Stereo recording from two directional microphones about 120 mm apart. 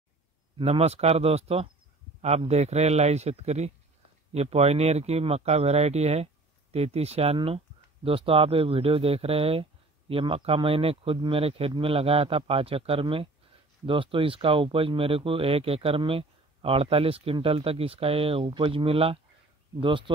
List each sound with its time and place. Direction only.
0.6 s speech: 55° right (ahead or behind)